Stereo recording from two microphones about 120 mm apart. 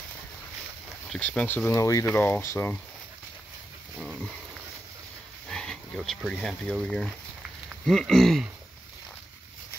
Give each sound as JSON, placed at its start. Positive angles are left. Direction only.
{"t": 1.2, "sound": "speech", "side_deg": 10}
{"t": 4.0, "sound": "pig", "side_deg": 0}
{"t": 5.5, "sound": "pig", "side_deg": 5}
{"t": 6.0, "sound": "speech", "side_deg": 5}